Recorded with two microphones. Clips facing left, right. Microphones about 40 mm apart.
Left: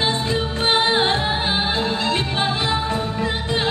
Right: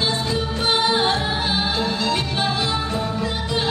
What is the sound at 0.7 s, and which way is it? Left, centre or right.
Music, left.